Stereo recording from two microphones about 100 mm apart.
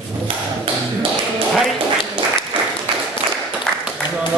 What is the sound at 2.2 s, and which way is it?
Applause, 65° right (ahead or behind).